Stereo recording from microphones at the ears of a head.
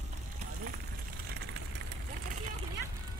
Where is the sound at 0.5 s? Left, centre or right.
Right.